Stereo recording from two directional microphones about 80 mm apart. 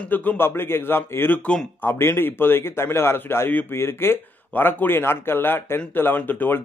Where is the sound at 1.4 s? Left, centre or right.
Centre.